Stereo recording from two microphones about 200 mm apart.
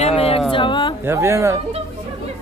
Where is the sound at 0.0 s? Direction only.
30° left (ahead or behind).